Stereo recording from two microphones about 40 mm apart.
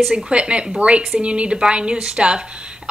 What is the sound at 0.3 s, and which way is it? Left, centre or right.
A woman's voice, right.